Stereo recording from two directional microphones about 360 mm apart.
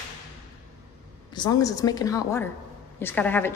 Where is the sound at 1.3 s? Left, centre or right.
Centre.